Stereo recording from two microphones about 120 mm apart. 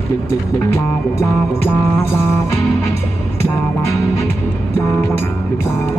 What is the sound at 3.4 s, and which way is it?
Music, 25° left (ahead or behind).